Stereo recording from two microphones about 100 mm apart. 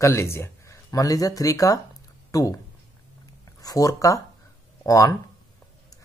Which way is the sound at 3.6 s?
35° left (ahead or behind).